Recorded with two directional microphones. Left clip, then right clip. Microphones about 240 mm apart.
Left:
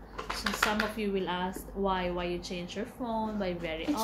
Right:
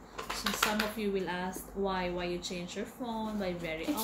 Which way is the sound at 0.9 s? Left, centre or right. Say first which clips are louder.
Left 2 dB; centre.